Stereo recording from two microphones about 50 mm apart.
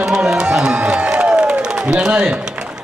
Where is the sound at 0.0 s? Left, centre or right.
Centre.